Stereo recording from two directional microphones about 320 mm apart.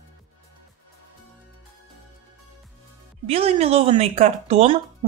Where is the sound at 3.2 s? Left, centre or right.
Centre.